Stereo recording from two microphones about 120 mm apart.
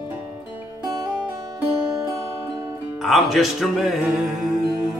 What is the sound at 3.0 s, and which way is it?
Music, centre (ahead or behind).